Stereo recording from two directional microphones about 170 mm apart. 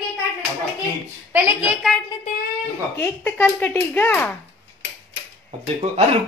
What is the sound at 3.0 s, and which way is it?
A woman's voice, 10° left (ahead or behind).